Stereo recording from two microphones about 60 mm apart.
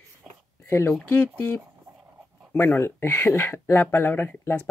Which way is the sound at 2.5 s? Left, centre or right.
Left.